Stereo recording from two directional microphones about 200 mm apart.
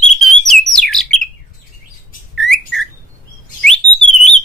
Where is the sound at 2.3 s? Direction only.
Centre (ahead or behind).